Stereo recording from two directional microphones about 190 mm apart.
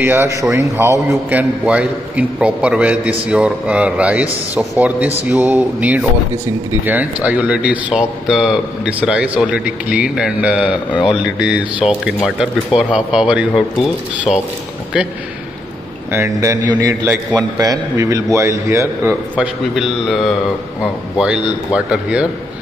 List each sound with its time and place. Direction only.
0.0 s a man's voice: 15° right (ahead or behind)
16.1 s a man's voice: 15° right (ahead or behind)